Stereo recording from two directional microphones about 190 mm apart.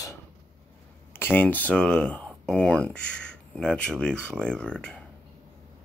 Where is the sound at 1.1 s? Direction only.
10° left (ahead or behind).